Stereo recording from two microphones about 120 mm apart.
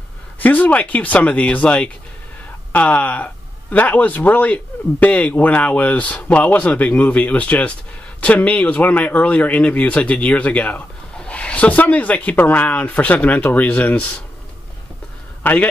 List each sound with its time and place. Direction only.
0.4 s speech: 15° left (ahead or behind)
15.4 s a man's voice: 15° left (ahead or behind)